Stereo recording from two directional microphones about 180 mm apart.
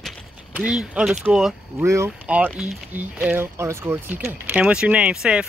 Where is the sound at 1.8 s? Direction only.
15° right (ahead or behind).